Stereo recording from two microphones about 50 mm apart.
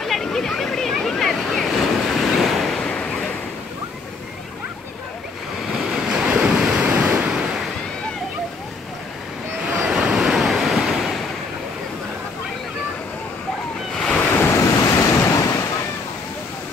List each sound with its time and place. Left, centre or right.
0.0 s a sound: centre
1.3 s waves: centre
2.8 s waves: left
5.7 s waves: centre
9.8 s waves: centre
13.9 s waves: centre
14.4 s waves: left